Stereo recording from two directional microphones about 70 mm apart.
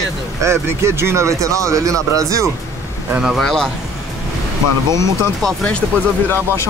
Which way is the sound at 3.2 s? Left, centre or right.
Centre.